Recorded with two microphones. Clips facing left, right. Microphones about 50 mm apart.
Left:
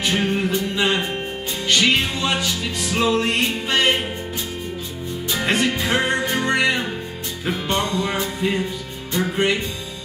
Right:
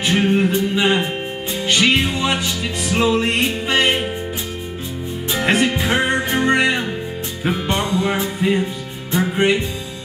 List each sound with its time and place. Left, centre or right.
0.0 s music: centre
5.3 s music: centre